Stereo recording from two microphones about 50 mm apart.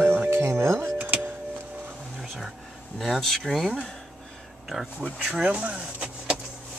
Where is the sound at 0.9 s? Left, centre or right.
Right.